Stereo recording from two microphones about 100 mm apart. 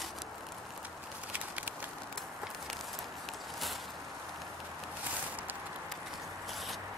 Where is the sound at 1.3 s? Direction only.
15° right (ahead or behind).